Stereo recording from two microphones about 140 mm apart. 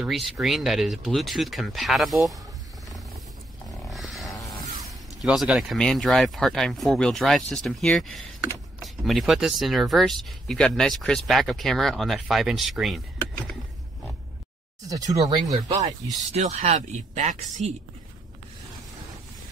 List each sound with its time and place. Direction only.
0.0 s speech: centre (ahead or behind)
3.9 s a sound: centre (ahead or behind)
5.2 s speech: 5° right (ahead or behind)
14.9 s speech: 25° right (ahead or behind)
16.3 s speech: 50° right (ahead or behind)